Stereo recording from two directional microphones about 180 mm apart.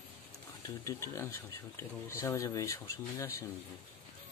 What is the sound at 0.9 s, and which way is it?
Speech, 15° left (ahead or behind).